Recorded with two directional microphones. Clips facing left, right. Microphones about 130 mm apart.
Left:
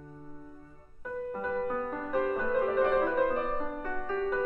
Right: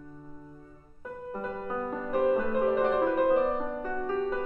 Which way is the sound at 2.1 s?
20° right (ahead or behind).